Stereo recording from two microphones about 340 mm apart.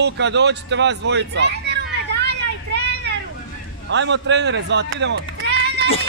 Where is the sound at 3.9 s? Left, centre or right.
Right.